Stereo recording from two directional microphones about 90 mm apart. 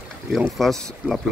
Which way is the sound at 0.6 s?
5° left (ahead or behind).